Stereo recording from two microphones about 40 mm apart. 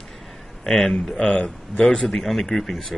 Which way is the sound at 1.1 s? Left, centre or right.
Left.